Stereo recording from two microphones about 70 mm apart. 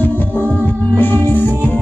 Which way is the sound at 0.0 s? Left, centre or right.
Left.